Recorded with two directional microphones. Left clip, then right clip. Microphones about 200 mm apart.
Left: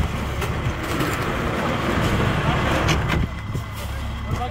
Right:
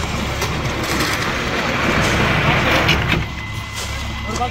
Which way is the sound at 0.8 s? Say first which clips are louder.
Right 5 dB; 45° right (ahead or behind).